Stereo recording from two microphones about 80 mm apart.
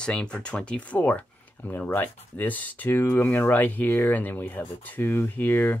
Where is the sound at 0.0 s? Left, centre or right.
Centre.